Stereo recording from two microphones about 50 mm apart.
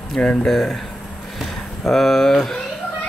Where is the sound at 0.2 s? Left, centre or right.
Left.